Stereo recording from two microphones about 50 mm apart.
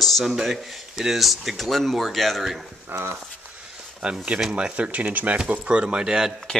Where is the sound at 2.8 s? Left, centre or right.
Right.